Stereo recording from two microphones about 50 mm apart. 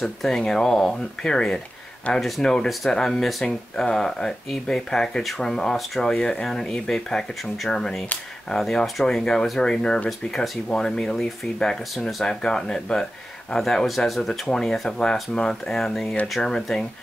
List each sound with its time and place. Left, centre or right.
0.0 s speech: centre
2.1 s speech: centre
2.4 s speech: centre
10.0 s speech: centre
10.7 s speech: centre
14.5 s speech: centre